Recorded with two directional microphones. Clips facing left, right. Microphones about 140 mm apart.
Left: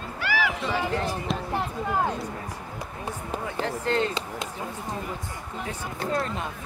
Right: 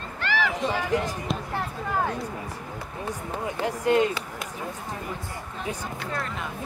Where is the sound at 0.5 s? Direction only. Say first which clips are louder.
Right 1 dB; 15° right (ahead or behind).